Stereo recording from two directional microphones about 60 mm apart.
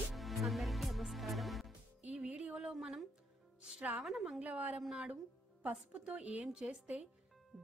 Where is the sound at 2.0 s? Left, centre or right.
Centre.